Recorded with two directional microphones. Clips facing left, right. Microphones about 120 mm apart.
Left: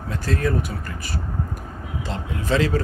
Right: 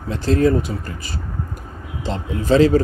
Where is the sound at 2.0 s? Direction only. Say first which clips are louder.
Right 5 dB; 30° right (ahead or behind).